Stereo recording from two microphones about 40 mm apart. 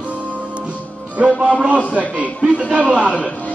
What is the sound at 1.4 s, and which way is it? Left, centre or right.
A man's voice, right.